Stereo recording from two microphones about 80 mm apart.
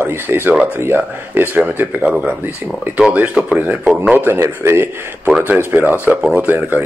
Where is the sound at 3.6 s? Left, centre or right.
Right.